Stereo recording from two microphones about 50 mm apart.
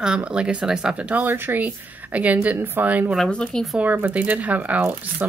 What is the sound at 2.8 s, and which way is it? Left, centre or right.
Speech, right.